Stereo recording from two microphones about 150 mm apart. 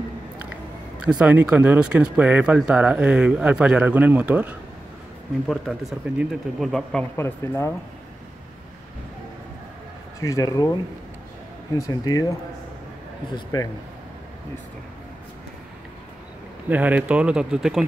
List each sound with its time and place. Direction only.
0.4 s speech: 10° right (ahead or behind)
5.5 s speech: centre (ahead or behind)
7.2 s speech: 15° left (ahead or behind)
10.2 s speech: 25° left (ahead or behind)
16.6 s speech: 10° right (ahead or behind)